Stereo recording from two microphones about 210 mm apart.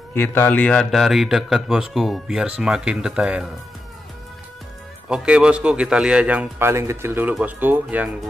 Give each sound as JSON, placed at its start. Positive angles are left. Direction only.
{"t": 0.1, "sound": "speech", "side_deg": 10}
{"t": 5.0, "sound": "speech", "side_deg": -5}